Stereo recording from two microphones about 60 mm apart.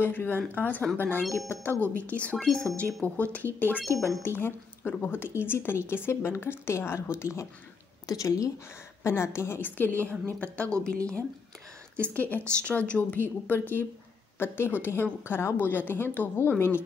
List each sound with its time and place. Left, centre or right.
0.0 s a woman's voice: left
8.1 s speech: left
9.0 s a woman's voice: left
16.5 s a woman's voice: left